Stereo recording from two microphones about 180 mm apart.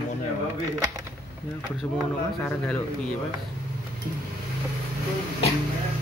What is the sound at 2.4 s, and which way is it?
Speech, 10° left (ahead or behind).